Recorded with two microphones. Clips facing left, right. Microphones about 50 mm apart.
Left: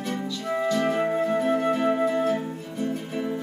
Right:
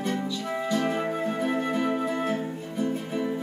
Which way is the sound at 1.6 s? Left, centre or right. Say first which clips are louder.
Left 4 dB; left.